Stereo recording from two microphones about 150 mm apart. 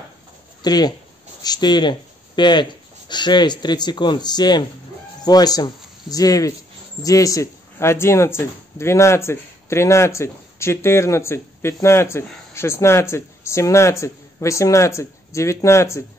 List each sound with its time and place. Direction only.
0.6 s speech: 25° left (ahead or behind)